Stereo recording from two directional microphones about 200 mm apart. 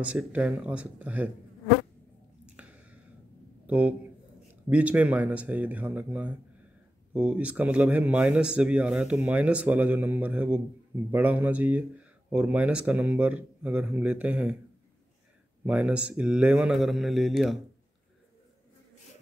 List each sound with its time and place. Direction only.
0.0 s speech: 5° right (ahead or behind)
2.4 s a sound: 5° right (ahead or behind)
3.6 s a man's voice: 5° right (ahead or behind)
15.6 s speech: 5° right (ahead or behind)